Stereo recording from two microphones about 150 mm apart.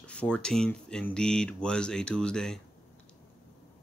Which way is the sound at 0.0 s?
10° left (ahead or behind).